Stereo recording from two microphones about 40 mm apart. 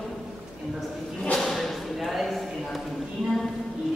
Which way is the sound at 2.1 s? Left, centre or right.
Centre.